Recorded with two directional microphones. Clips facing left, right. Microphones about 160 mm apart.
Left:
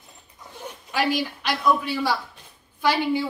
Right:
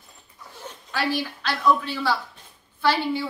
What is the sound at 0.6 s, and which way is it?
A man's voice, 15° left (ahead or behind).